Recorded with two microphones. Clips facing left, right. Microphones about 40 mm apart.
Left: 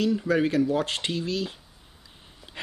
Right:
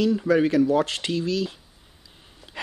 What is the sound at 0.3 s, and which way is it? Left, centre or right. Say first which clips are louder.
Speech: right 5 dB; centre.